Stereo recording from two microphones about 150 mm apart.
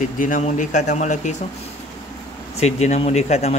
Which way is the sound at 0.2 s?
60° left (ahead or behind).